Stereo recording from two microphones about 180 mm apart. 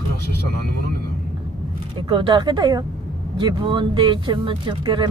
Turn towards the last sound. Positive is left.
turn(degrees=-25)  # may be behind; listen again after turning